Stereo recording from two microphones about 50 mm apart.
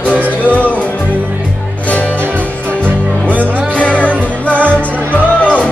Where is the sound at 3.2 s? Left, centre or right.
Left.